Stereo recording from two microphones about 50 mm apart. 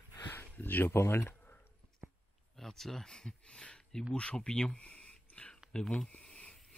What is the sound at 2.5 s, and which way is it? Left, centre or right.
Speech, centre.